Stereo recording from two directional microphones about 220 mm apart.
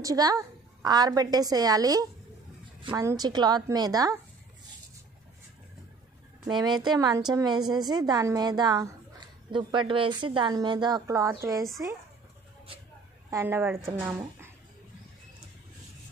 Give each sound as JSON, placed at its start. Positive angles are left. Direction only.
{"t": 0.0, "sound": "a woman's voice", "side_deg": -15}
{"t": 6.4, "sound": "a woman's voice", "side_deg": -20}
{"t": 13.3, "sound": "a woman's voice", "side_deg": -10}